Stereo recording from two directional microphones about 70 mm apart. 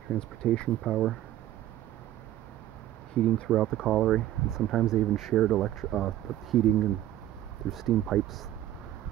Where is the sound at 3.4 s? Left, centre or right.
Centre.